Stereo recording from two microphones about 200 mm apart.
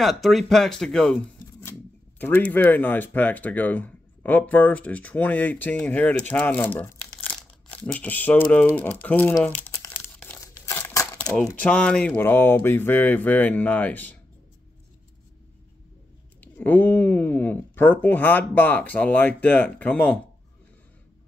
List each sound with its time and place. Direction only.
0.0 s speech: centre (ahead or behind)
7.2 s crumpling: 5° left (ahead or behind)
11.4 s speech: 5° left (ahead or behind)
16.5 s speech: 10° left (ahead or behind)